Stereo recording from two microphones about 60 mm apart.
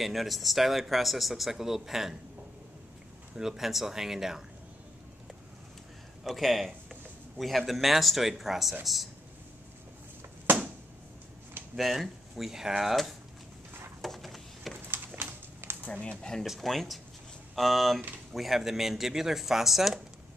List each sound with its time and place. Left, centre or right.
0.0 s speech: centre
3.3 s speech: centre
6.2 s speech: centre
11.7 s speech: centre
14.0 s a sound: centre
15.1 s a sound: right
15.9 s speech: centre
16.4 s speech: centre